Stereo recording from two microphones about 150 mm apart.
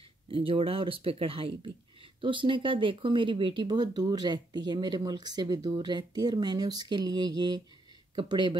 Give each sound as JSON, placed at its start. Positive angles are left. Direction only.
{"t": 0.3, "sound": "speech", "side_deg": -35}